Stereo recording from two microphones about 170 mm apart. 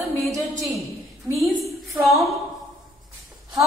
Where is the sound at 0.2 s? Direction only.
Centre (ahead or behind).